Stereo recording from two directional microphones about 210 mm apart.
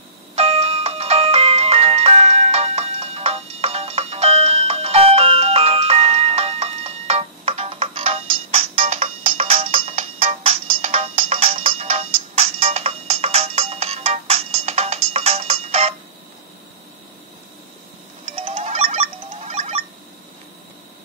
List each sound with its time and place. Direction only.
0.4 s music: 30° right (ahead or behind)
18.3 s music: 25° right (ahead or behind)